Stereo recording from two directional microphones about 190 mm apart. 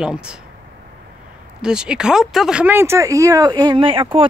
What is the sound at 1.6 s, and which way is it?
Speech, 5° right (ahead or behind).